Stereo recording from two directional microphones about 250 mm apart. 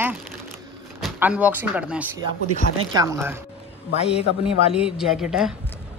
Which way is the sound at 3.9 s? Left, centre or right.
Left.